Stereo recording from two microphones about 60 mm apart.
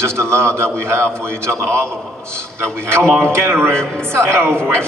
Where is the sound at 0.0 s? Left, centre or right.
Right.